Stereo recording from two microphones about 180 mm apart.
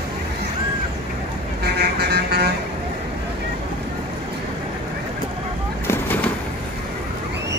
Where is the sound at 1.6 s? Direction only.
60° right (ahead or behind).